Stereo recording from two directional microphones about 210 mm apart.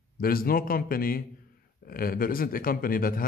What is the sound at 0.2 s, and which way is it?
A man's voice, 45° left (ahead or behind).